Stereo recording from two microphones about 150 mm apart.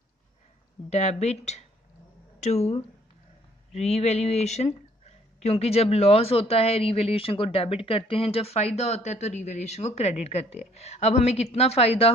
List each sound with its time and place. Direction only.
0.8 s speech: 50° left (ahead or behind)